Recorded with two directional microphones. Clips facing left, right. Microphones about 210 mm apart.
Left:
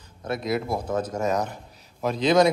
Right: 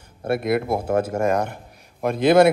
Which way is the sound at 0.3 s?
55° right (ahead or behind).